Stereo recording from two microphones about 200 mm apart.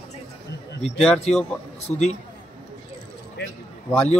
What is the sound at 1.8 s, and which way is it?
Speech, 35° left (ahead or behind).